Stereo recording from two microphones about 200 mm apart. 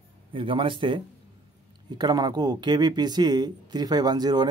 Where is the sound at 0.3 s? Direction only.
25° right (ahead or behind).